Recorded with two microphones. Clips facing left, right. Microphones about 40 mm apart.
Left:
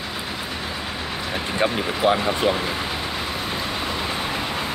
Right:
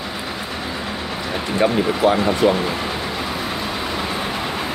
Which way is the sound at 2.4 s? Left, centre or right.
Centre.